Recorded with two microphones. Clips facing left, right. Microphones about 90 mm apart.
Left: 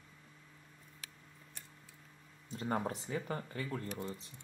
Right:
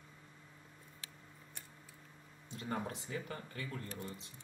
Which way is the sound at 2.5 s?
30° left (ahead or behind).